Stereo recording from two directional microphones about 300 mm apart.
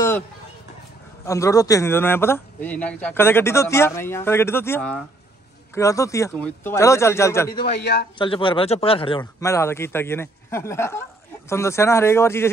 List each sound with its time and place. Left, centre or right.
1.2 s speech: centre
7.8 s a man's voice: left
8.2 s speech: centre